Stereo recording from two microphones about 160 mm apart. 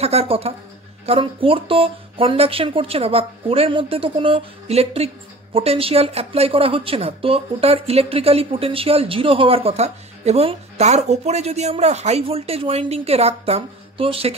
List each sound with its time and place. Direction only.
0.0 s speech: 40° right (ahead or behind)